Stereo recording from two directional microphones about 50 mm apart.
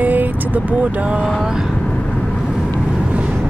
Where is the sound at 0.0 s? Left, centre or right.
Right.